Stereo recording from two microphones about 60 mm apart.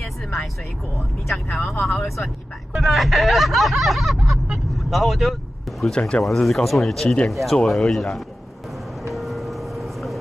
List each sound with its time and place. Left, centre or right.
0.0 s vehicle: centre
1.5 s speech: centre
5.9 s speech: centre
6.2 s speech: centre
9.1 s vehicle: centre